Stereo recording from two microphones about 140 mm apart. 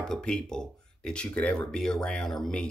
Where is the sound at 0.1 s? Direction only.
5° left (ahead or behind).